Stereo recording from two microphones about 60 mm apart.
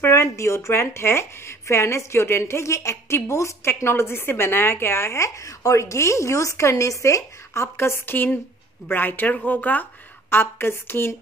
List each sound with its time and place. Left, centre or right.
0.0 s a woman's voice: left
10.3 s speech: left